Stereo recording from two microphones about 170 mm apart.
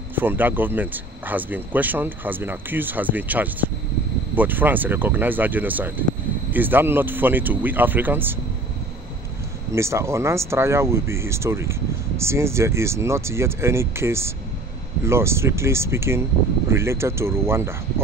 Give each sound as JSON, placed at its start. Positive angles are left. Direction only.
{"t": 0.1, "sound": "speech", "side_deg": -10}
{"t": 9.7, "sound": "speech", "side_deg": -15}